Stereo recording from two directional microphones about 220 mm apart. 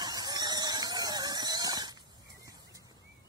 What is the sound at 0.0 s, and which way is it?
Squeal, 15° right (ahead or behind).